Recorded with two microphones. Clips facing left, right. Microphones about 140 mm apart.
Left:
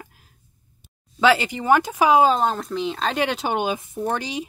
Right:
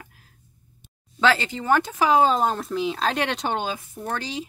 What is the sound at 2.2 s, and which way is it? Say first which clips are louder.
Speech: left 2 dB; centre (ahead or behind).